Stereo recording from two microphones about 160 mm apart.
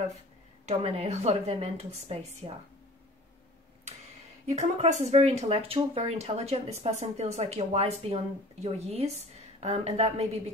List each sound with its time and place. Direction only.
0.7 s speech: 40° right (ahead or behind)
4.5 s speech: 45° right (ahead or behind)